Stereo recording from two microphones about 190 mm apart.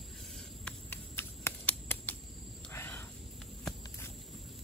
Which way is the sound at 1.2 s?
10° left (ahead or behind).